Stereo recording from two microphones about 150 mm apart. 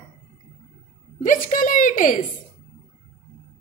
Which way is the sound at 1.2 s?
60° left (ahead or behind).